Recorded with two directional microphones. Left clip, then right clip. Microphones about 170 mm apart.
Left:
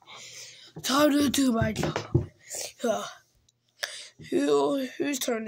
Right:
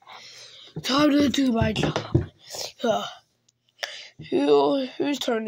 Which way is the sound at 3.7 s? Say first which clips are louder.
Right 2 dB; 15° right (ahead or behind).